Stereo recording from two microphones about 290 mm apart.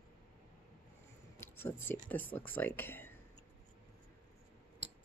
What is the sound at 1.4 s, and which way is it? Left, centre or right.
Speech, centre.